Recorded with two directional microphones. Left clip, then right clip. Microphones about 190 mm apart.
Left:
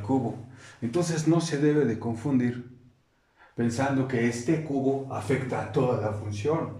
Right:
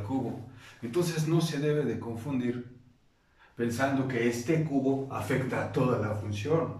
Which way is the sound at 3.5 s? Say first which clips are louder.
Left 3 dB; 35° left (ahead or behind).